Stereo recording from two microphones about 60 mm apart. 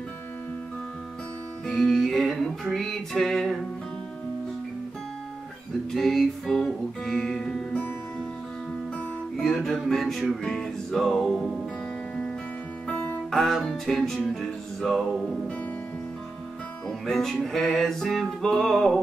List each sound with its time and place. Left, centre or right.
1.7 s music: centre
5.9 s music: centre
7.7 s music: left
9.4 s music: centre
13.3 s music: centre
17.0 s music: centre